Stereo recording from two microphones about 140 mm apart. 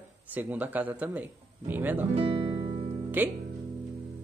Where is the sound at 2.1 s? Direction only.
35° right (ahead or behind).